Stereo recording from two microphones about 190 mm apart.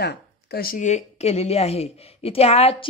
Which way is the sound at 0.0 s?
55° left (ahead or behind).